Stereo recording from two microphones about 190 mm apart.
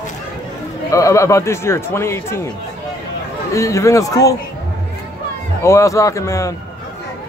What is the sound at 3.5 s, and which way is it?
Speech, 15° left (ahead or behind).